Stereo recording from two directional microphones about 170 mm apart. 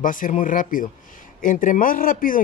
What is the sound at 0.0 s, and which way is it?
Speech, 50° left (ahead or behind).